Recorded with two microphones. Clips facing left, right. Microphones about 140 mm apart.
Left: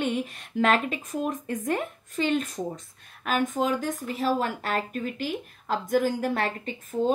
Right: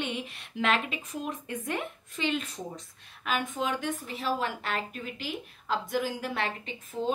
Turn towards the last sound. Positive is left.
turn(degrees=45)  # may be behind; listen again after turning